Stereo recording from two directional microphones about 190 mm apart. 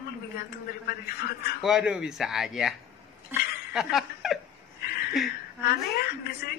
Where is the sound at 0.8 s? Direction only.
55° left (ahead or behind).